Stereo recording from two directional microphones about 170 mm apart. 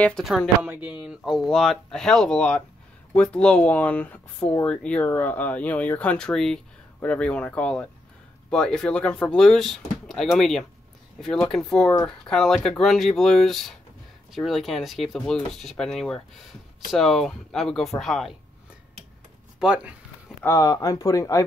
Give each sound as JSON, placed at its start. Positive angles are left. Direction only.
{"t": 0.0, "sound": "speech", "side_deg": 0}
{"t": 0.6, "sound": "speech", "side_deg": -10}
{"t": 19.6, "sound": "speech", "side_deg": -5}
{"t": 20.4, "sound": "speech", "side_deg": 20}